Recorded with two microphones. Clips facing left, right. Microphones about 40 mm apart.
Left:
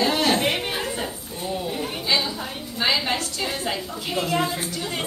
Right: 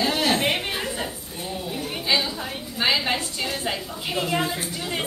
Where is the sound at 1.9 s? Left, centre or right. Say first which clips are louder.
Right 2 dB; centre.